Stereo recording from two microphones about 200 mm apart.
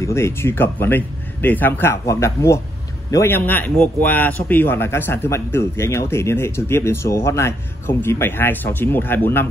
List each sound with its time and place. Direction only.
0.0 s speech: 15° left (ahead or behind)